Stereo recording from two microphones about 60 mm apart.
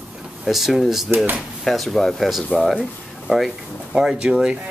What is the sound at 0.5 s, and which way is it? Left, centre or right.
Speech, centre.